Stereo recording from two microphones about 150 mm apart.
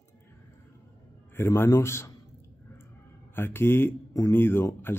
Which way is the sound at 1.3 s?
15° left (ahead or behind).